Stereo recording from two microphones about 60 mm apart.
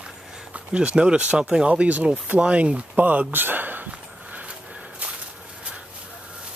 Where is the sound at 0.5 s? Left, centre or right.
Centre.